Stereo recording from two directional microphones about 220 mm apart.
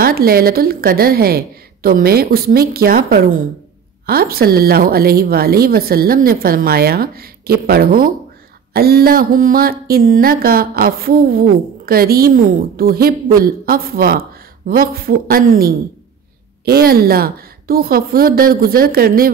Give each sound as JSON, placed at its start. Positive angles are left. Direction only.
{"t": 0.0, "sound": "a woman's voice", "side_deg": -45}